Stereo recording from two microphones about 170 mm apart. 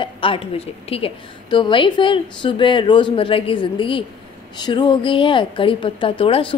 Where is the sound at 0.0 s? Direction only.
30° left (ahead or behind).